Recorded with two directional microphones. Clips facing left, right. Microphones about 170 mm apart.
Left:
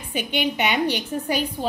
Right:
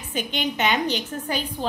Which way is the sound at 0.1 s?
10° left (ahead or behind).